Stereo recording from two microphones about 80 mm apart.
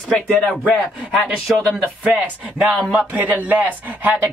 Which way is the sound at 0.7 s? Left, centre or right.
Centre.